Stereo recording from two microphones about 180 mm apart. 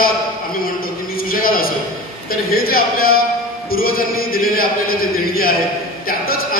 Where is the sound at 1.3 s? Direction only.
55° left (ahead or behind).